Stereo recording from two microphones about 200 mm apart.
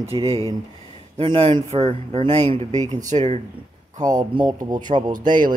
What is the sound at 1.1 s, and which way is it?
Speech, 25° right (ahead or behind).